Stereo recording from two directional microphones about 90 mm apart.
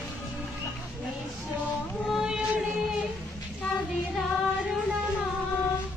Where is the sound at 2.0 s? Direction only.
5° right (ahead or behind).